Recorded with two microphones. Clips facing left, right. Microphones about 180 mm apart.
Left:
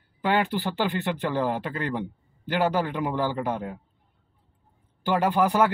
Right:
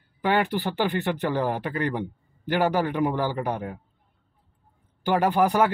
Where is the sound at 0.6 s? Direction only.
20° right (ahead or behind).